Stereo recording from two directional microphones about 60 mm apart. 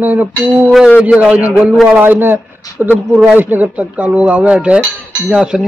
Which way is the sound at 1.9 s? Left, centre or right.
Right.